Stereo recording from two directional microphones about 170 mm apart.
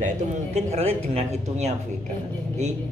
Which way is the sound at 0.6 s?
40° right (ahead or behind).